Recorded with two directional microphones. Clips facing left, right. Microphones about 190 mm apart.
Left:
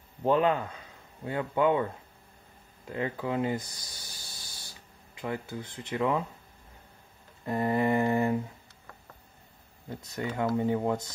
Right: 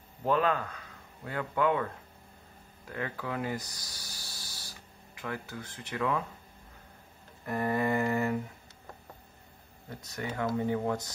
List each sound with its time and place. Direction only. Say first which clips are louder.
0.2 s speech: left 3 dB; 20° left (ahead or behind)
7.4 s humming: left 3 dB; 25° left (ahead or behind)
10.3 s humming: left 3 dB; 20° left (ahead or behind)